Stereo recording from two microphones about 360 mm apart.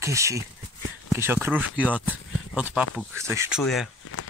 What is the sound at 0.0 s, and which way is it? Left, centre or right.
Speech, centre.